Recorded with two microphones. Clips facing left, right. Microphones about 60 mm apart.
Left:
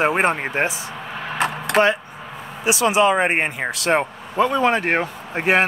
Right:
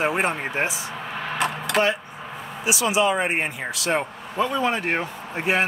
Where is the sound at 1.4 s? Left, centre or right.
Left.